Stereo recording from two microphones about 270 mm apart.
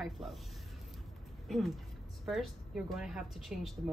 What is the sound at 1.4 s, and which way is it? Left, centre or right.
A woman's voice, centre.